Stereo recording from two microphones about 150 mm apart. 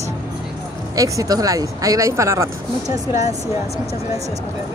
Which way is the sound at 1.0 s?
25° right (ahead or behind).